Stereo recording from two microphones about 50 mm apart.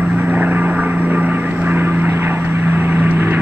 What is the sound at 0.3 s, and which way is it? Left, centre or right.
Vehicle, right.